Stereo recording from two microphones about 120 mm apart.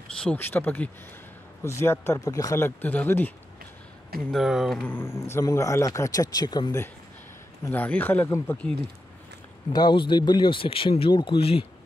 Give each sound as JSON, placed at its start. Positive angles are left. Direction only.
{"t": 0.2, "sound": "speech", "side_deg": 15}
{"t": 4.3, "sound": "speech", "side_deg": 0}
{"t": 4.8, "sound": "speech", "side_deg": 20}
{"t": 7.6, "sound": "speech", "side_deg": 15}
{"t": 9.7, "sound": "speech", "side_deg": 35}